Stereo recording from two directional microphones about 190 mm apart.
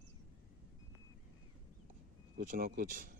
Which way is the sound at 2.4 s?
50° right (ahead or behind).